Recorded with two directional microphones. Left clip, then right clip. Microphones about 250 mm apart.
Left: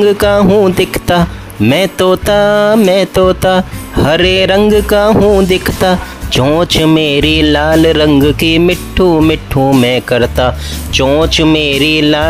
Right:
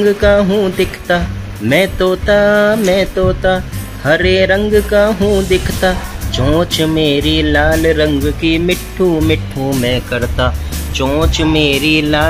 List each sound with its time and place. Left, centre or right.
0.2 s speech: left